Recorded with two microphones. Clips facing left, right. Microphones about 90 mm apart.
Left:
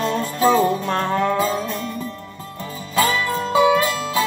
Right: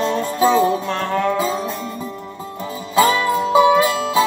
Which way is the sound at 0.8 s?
15° left (ahead or behind).